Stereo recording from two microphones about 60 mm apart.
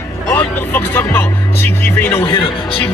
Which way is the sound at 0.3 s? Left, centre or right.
Left.